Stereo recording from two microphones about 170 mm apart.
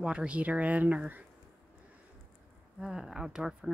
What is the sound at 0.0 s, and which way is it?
Speech, 5° right (ahead or behind).